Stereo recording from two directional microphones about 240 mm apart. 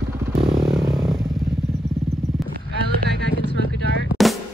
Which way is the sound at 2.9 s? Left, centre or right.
Right.